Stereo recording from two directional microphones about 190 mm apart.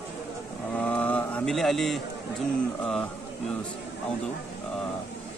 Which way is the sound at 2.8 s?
5° left (ahead or behind).